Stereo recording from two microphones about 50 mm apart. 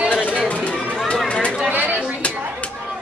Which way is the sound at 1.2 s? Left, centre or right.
Left.